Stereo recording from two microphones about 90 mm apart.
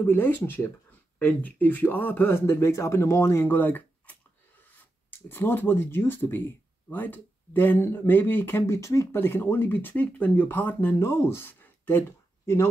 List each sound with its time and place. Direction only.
0.0 s speech: 20° left (ahead or behind)
5.3 s speech: 25° left (ahead or behind)
9.1 s speech: 25° left (ahead or behind)